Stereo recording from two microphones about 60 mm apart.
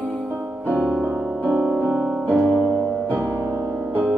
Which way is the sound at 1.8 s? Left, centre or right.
Centre.